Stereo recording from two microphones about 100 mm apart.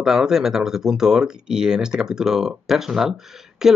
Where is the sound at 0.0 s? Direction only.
5° right (ahead or behind).